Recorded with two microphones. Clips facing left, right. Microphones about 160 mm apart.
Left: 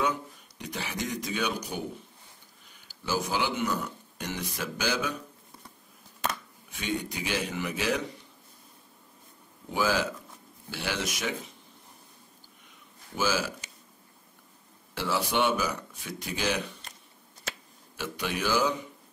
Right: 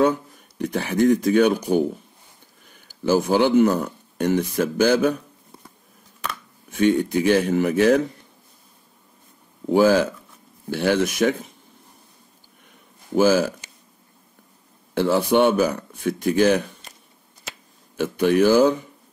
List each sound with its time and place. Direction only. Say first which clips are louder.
0.0 s speech: right 10 dB; 50° right (ahead or behind)
6.7 s speech: right 14 dB; 50° right (ahead or behind)
9.7 s speech: right 11 dB; 45° right (ahead or behind)
13.1 s speech: right 12 dB; 50° right (ahead or behind)
15.0 s speech: right 10 dB; 55° right (ahead or behind)
17.9 s speech: right 15 dB; 50° right (ahead or behind)